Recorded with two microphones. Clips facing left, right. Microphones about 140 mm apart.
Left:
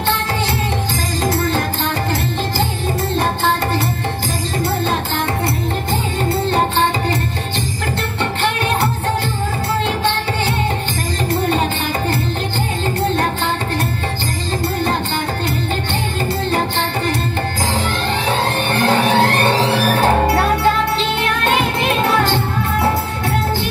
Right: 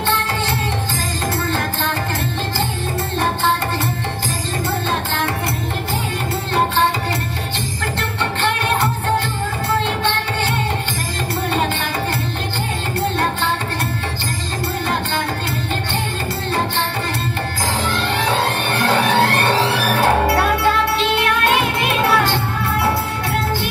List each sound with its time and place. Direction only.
18.2 s music: 15° left (ahead or behind)
19.7 s music: 40° left (ahead or behind)
21.2 s music: 20° left (ahead or behind)